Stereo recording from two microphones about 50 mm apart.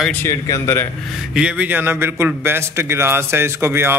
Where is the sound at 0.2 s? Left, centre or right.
Left.